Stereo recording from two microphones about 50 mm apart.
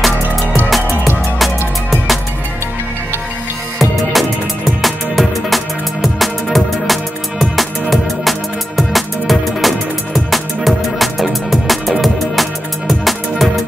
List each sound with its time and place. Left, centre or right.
0.0 s music: centre
3.8 s music: centre